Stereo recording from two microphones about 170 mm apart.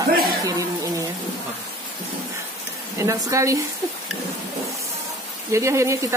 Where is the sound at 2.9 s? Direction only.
20° right (ahead or behind).